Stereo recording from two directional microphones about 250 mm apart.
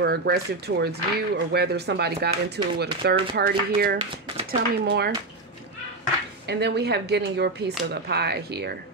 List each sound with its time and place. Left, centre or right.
0.0 s speech: right
6.4 s speech: right